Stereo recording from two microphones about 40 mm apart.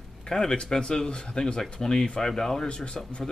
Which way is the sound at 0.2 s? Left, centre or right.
Centre.